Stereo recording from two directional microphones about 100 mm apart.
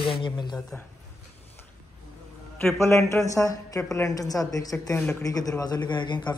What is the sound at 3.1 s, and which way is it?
A woman's voice, 30° left (ahead or behind).